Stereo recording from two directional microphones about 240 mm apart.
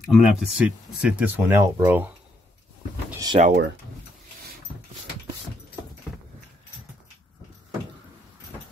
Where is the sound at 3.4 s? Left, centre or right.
Right.